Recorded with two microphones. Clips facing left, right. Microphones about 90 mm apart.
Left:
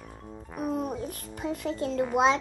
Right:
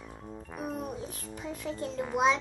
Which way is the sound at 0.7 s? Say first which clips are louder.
Left 6 dB; 60° left (ahead or behind).